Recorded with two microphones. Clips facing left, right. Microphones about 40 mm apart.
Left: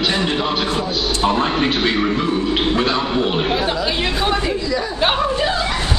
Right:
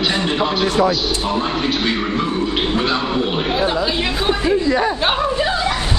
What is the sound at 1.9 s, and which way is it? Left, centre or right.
A man's voice, centre.